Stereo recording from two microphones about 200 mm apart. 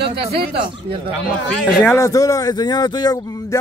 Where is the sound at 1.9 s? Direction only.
15° left (ahead or behind).